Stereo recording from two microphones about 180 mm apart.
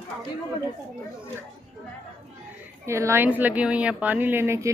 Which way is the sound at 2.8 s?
15° right (ahead or behind).